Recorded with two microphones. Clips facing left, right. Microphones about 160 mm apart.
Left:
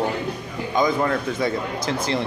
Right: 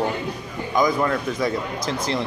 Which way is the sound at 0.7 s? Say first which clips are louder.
Even; 25° left (ahead or behind).